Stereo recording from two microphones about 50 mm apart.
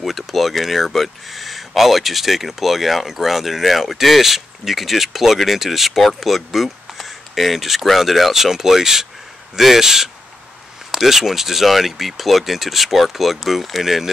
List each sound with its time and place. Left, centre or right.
0.0 s speech: centre